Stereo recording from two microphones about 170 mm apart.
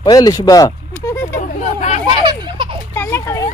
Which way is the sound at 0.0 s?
25° left (ahead or behind).